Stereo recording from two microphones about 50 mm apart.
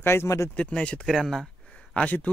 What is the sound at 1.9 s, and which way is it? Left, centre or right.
Speech, left.